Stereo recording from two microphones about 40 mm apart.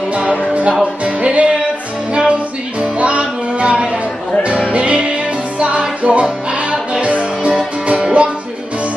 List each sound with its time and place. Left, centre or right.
0.4 s music: right
3.0 s music: right
3.7 s chatter: centre
4.6 s music: right